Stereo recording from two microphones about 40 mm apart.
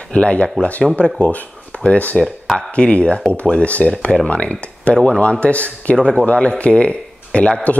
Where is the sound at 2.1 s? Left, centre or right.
Centre.